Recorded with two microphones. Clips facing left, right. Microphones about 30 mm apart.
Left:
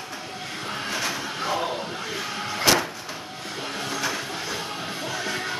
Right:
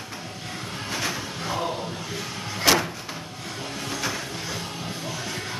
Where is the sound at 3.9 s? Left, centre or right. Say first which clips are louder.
Left 1 dB; centre.